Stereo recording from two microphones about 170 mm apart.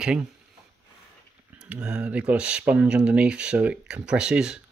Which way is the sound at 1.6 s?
5° right (ahead or behind).